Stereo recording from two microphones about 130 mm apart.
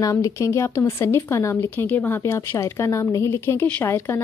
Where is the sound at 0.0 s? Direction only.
25° left (ahead or behind).